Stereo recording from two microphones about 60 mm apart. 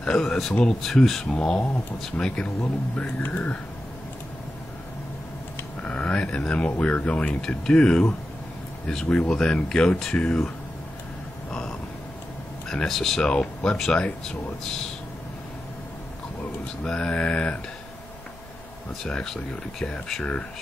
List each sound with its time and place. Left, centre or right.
0.0 s speech: centre
3.3 s speech: left
5.8 s speech: left
12.6 s speech: centre
16.8 s speech: centre
19.0 s speech: centre